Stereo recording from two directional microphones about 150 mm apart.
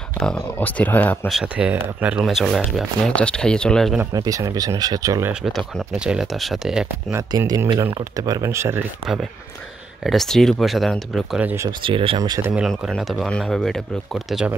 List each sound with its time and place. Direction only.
0.2 s speech: 10° left (ahead or behind)
1.3 s speech: 10° right (ahead or behind)
4.1 s speech: 25° right (ahead or behind)
5.4 s speech: 5° right (ahead or behind)
7.2 s speech: 25° right (ahead or behind)
10.0 s speech: centre (ahead or behind)
11.4 s speech: 20° right (ahead or behind)
11.8 s speech: 35° right (ahead or behind)
12.2 s speech: 25° right (ahead or behind)
12.6 s speech: centre (ahead or behind)